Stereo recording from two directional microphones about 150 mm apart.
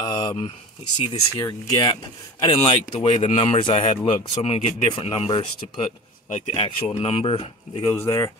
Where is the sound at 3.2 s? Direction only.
35° left (ahead or behind).